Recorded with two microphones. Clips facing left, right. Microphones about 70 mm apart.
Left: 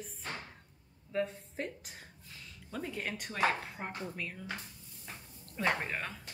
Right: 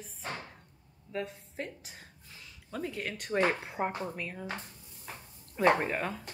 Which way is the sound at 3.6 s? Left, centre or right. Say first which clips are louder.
Right 8 dB; centre.